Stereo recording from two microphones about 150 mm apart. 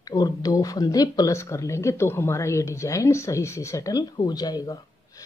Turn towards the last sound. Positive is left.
turn(degrees=25)  # may be behind; listen again after turning